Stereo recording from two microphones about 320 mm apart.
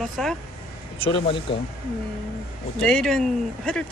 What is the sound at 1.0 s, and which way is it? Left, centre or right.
Speech, centre.